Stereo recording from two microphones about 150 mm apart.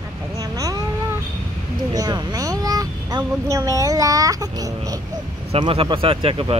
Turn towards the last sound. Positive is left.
turn(degrees=-35)  # may be behind; listen again after turning